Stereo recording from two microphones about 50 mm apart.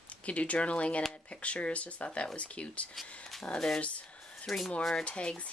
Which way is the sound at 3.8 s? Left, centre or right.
Left.